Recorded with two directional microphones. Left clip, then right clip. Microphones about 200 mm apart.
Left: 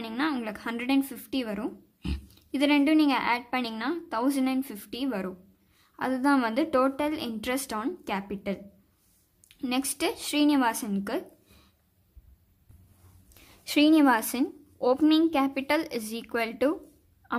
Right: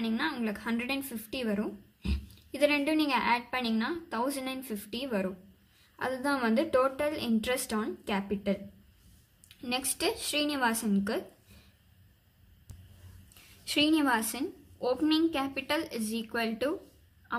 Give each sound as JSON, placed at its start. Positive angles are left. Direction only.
{"t": 0.0, "sound": "a woman's voice", "side_deg": 40}
{"t": 13.7, "sound": "a woman's voice", "side_deg": 40}
{"t": 17.3, "sound": "a sound", "side_deg": 40}